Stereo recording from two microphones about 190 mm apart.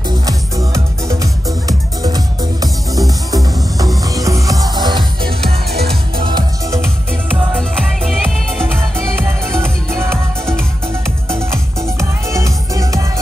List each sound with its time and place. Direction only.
0.3 s music: 15° right (ahead or behind)
5.2 s music: 55° right (ahead or behind)
6.2 s music: 20° right (ahead or behind)
7.5 s music: centre (ahead or behind)
11.2 s music: 15° right (ahead or behind)